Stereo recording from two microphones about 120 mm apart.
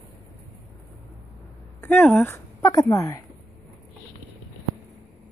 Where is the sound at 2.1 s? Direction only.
15° left (ahead or behind).